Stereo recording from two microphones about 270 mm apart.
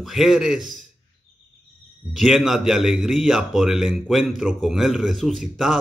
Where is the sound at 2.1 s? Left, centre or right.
Centre.